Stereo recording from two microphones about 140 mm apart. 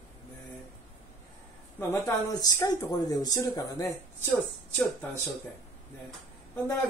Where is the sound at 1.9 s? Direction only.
25° left (ahead or behind).